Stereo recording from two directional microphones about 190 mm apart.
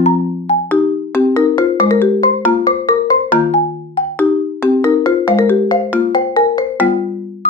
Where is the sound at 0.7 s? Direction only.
10° left (ahead or behind).